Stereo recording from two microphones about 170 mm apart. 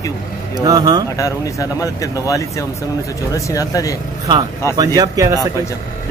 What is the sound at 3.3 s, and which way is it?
Speech, 20° left (ahead or behind).